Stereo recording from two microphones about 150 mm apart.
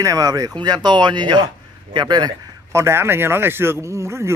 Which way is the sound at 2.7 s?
15° right (ahead or behind).